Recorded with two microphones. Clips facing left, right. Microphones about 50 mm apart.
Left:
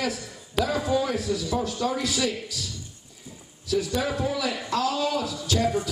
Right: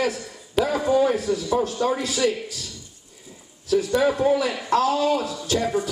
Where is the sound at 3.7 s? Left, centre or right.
Right.